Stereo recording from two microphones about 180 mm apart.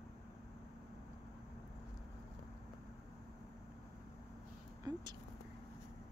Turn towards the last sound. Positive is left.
turn(degrees=-20)  # may be behind; listen again after turning